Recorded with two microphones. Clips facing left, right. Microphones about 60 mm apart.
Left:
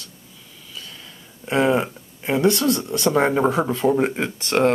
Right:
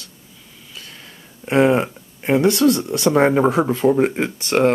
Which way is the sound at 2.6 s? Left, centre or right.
Centre.